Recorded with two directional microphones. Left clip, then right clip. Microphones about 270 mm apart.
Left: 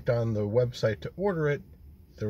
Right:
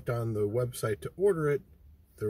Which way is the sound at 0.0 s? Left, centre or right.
Centre.